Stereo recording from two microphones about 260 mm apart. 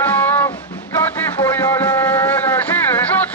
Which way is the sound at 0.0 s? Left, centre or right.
Centre.